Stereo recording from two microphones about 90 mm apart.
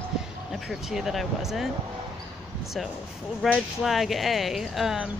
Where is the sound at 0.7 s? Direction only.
5° right (ahead or behind).